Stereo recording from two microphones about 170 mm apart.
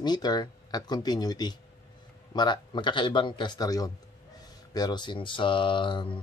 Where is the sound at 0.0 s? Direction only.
25° left (ahead or behind).